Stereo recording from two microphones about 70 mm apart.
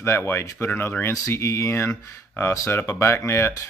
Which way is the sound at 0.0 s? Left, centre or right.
Left.